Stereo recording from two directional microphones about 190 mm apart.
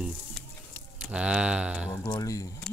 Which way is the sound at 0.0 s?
5° left (ahead or behind).